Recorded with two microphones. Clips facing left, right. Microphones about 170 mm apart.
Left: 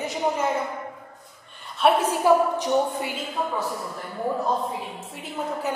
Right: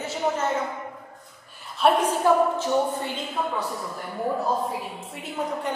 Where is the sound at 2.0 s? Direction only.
15° left (ahead or behind).